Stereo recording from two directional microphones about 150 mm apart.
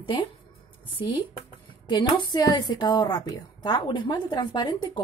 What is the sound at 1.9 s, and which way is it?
A woman's voice, 30° left (ahead or behind).